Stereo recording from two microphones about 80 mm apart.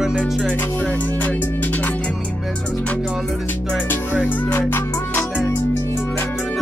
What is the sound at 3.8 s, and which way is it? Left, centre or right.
Music, left.